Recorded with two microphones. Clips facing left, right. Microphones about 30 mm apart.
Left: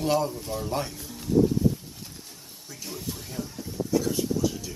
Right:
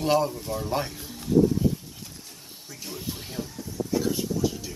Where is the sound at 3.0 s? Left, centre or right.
Centre.